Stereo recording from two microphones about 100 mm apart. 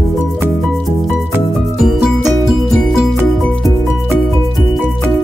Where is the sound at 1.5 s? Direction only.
Centre (ahead or behind).